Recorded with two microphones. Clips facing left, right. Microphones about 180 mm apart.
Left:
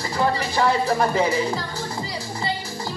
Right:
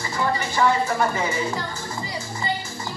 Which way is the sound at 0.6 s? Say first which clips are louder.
Left 1 dB; 35° left (ahead or behind).